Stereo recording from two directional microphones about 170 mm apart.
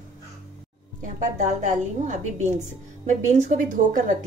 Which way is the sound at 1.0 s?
45° right (ahead or behind).